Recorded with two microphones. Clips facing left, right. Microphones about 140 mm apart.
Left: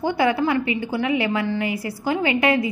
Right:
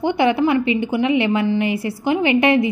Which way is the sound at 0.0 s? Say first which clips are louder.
Right 3 dB; 20° right (ahead or behind).